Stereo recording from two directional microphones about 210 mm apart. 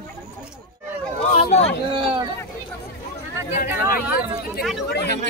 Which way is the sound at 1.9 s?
25° right (ahead or behind).